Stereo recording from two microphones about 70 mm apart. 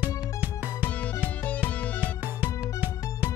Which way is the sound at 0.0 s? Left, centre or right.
Right.